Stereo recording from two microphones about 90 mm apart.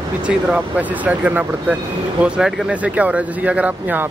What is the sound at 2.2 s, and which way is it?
Speech, 5° right (ahead or behind).